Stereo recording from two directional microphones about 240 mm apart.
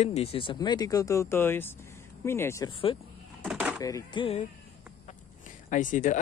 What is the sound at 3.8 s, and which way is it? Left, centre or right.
Speech, centre.